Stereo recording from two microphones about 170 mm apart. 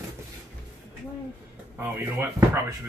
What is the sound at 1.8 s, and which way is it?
Speech, 15° right (ahead or behind).